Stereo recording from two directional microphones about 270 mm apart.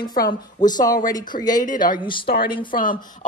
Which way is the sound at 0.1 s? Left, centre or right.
Left.